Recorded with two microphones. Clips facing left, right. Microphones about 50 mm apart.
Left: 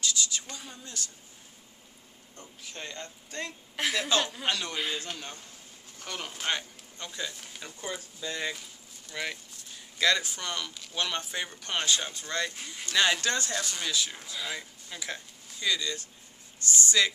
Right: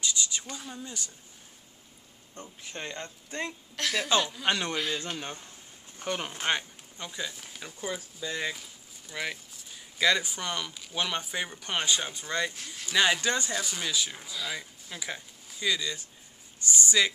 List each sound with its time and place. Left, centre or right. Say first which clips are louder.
0.5 s speech: right 3 dB; centre
0.8 s speech: right 1 dB; centre
2.6 s speech: right 2 dB; right
3.8 s speech: left 2 dB; centre
4.5 s speech: right 3 dB; right
4.7 s speech: right 2 dB; centre
5.0 s speech: right 3 dB; right
12.5 s speech: left 1 dB; centre
12.8 s speech: right 1 dB; centre